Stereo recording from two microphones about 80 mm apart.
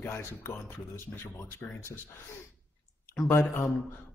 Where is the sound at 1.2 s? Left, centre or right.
Left.